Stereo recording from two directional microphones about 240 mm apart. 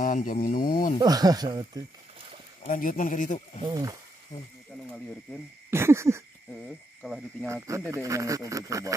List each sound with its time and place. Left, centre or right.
0.0 s speech: left
1.0 s speech: centre
2.6 s speech: left
3.6 s speech: centre
5.7 s speech: centre
7.0 s speech: centre
7.4 s speech: centre